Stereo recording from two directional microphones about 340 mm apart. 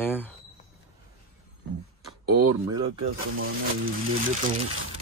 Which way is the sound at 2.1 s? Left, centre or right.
Right.